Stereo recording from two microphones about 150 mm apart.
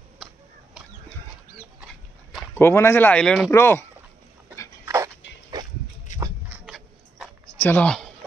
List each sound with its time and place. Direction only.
2.5 s speech: 15° left (ahead or behind)
3.5 s speech: 15° left (ahead or behind)
4.8 s dog: 20° right (ahead or behind)
6.5 s a sound: centre (ahead or behind)
7.6 s speech: 10° left (ahead or behind)